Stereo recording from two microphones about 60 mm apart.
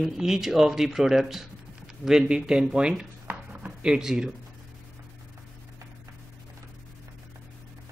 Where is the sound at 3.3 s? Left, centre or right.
Centre.